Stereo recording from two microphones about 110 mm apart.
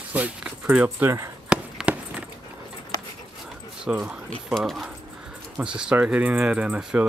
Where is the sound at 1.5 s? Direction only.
10° right (ahead or behind).